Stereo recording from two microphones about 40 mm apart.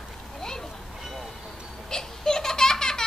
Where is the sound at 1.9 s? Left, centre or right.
Centre.